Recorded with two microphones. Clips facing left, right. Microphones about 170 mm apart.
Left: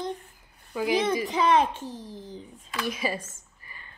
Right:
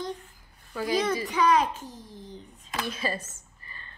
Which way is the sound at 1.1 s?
25° left (ahead or behind).